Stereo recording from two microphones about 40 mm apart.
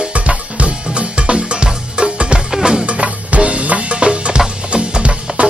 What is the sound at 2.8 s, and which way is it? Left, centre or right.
Music, right.